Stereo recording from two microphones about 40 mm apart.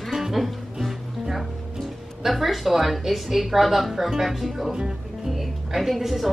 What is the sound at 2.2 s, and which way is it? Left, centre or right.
A woman's voice, centre.